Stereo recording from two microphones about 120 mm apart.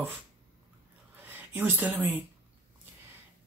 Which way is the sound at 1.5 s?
15° right (ahead or behind).